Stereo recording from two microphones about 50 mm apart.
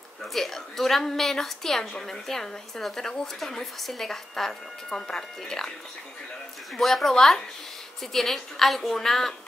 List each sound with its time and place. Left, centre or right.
0.2 s a woman's voice: centre
6.8 s a woman's voice: centre